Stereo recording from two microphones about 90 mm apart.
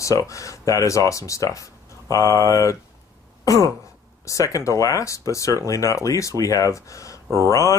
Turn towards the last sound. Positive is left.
turn(degrees=35)  # may be behind; listen again after turning